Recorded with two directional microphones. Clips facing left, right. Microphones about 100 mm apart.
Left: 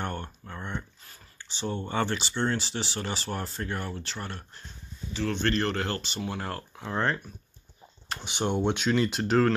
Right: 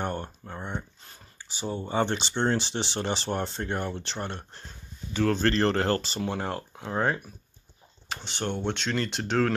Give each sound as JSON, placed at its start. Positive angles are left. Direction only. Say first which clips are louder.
{"t": 0.0, "sound": "speech", "louder": "right 3 dB", "side_deg": -20}
{"t": 5.1, "sound": "speech", "louder": "right 4 dB", "side_deg": -45}
{"t": 6.3, "sound": "speech", "louder": "right 3 dB", "side_deg": -25}
{"t": 6.8, "sound": "speech", "louder": "right 1 dB", "side_deg": -10}
{"t": 8.2, "sound": "speech", "louder": "left 4 dB", "side_deg": 15}